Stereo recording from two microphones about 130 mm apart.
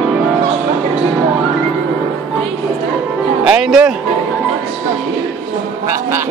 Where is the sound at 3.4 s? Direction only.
5° right (ahead or behind).